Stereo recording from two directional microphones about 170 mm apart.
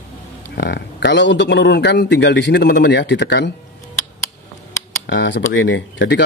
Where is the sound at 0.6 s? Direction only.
75° left (ahead or behind).